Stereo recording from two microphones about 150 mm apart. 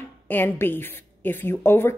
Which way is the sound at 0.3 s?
15° left (ahead or behind).